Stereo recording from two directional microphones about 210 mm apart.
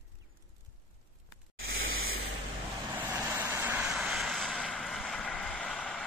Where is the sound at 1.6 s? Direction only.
75° right (ahead or behind).